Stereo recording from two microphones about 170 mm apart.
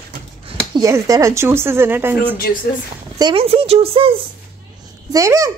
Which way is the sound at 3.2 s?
30° right (ahead or behind).